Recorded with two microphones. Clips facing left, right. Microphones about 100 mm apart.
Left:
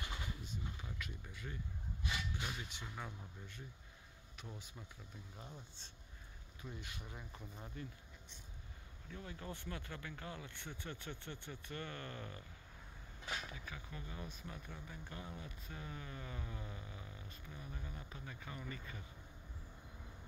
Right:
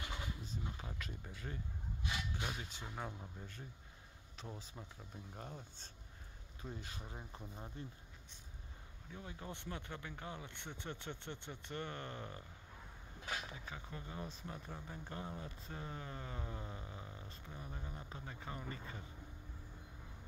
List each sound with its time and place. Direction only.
0.5 s a sound: 35° right (ahead or behind)
2.4 s speech: 35° right (ahead or behind)
5.3 s speech: 45° right (ahead or behind)
6.6 s speech: 35° right (ahead or behind)
7.5 s speech: 25° right (ahead or behind)
9.1 s speech: 20° right (ahead or behind)
13.5 s speech: 30° right (ahead or behind)